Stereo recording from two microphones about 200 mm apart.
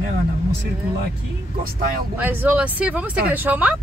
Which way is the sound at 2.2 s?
10° right (ahead or behind).